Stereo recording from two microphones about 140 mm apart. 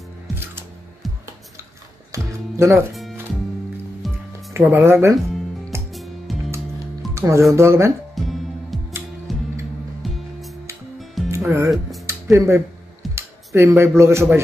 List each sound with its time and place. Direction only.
1.0 s music: centre (ahead or behind)
2.1 s speech: 20° right (ahead or behind)
2.9 s music: centre (ahead or behind)
4.6 s speech: 15° right (ahead or behind)
5.9 s music: centre (ahead or behind)
7.2 s speech: 20° right (ahead or behind)
8.1 s music: centre (ahead or behind)
11.2 s music: 20° right (ahead or behind)
12.1 s speech: 20° right (ahead or behind)